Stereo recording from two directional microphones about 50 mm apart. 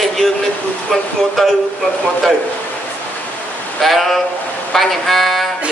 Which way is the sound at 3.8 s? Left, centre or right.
Centre.